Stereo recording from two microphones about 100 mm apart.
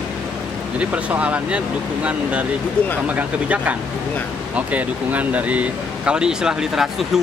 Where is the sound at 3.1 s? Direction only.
15° right (ahead or behind).